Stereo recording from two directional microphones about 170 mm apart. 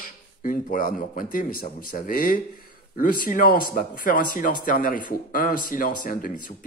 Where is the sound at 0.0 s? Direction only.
55° left (ahead or behind).